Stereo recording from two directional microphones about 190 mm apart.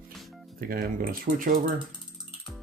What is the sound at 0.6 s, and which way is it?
Speech, 50° right (ahead or behind).